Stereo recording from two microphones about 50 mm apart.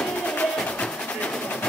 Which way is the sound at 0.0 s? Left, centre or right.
Left.